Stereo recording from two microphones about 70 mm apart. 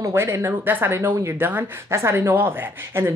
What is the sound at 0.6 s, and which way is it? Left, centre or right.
Speech, right.